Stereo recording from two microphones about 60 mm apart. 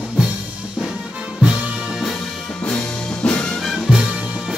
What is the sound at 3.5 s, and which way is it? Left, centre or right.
Music, centre.